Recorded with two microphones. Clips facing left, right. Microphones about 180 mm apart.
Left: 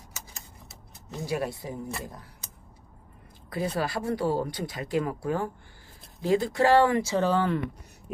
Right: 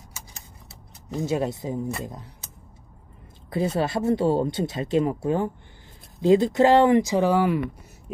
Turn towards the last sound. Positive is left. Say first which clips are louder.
# right 4 dB
turn(degrees=-10)  # may be behind; listen again after turning